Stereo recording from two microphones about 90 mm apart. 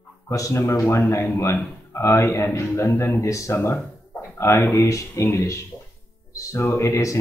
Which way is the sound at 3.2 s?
35° left (ahead or behind).